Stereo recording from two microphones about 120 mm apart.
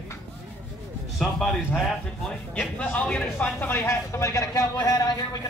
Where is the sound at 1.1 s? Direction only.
Centre (ahead or behind).